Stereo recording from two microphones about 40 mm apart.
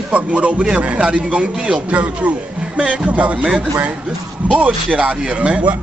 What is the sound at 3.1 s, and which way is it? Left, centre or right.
Speech, right.